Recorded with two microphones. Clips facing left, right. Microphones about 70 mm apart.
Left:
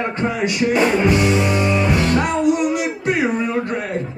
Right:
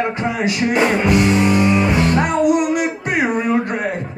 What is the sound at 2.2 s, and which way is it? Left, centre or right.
Music, right.